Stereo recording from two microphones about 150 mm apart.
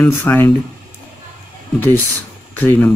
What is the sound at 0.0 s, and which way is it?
Speech, 15° left (ahead or behind).